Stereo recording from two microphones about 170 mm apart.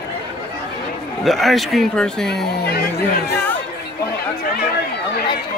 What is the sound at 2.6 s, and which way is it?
Speech, 65° left (ahead or behind).